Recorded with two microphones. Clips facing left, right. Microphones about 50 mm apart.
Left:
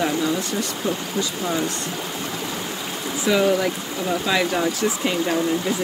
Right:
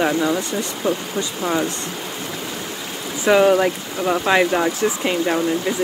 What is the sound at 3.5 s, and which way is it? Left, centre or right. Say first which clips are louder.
Speech: right 4 dB; right.